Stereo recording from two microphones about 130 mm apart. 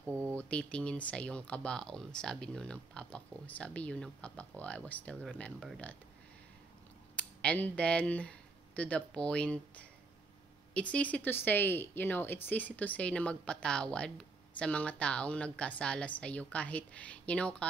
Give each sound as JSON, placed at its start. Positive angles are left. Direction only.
{"t": 0.0, "sound": "a sound", "side_deg": -20}
{"t": 0.4, "sound": "a woman's voice", "side_deg": 10}
{"t": 7.2, "sound": "a woman's voice", "side_deg": 10}